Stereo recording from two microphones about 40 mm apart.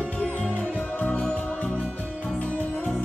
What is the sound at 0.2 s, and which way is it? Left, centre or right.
Music, left.